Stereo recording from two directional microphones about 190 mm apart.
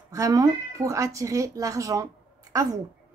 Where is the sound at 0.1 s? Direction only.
15° right (ahead or behind).